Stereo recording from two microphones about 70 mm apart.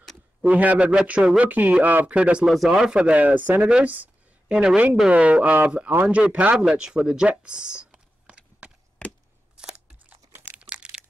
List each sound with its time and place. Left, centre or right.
0.4 s a man's voice: right
2.4 s speech: centre
2.7 s a man's voice: centre
3.6 s a sound: centre
4.6 s a man's voice: centre
9.6 s crunch: centre
10.5 s crumpling: centre